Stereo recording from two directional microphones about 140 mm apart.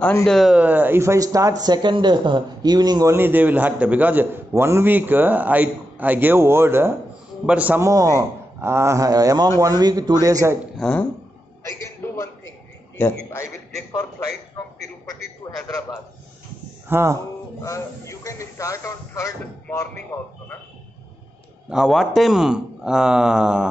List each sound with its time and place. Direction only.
0.2 s speech: centre (ahead or behind)
7.9 s speech: 25° right (ahead or behind)
10.8 s speech: 5° left (ahead or behind)
11.6 s a sound: 20° left (ahead or behind)
14.6 s a sound: 25° left (ahead or behind)
16.9 s speech: 20° right (ahead or behind)
17.6 s speech: 20° left (ahead or behind)
21.6 s speech: centre (ahead or behind)